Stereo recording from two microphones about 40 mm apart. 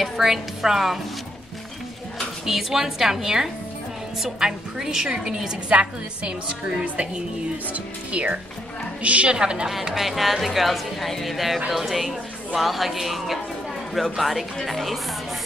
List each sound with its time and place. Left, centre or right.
0.2 s a woman's voice: centre
2.4 s a woman's voice: centre
5.7 s a woman's voice: right
7.7 s speech: right
9.4 s a woman's voice: right
9.9 s speech: centre